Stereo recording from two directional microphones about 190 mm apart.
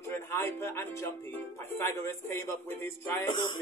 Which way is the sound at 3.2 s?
20° left (ahead or behind).